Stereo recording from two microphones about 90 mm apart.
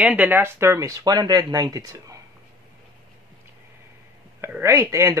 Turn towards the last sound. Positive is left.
turn(degrees=-35)  # may be behind; listen again after turning